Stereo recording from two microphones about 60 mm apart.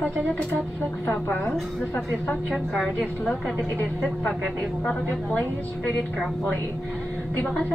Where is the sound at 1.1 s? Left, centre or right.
Left.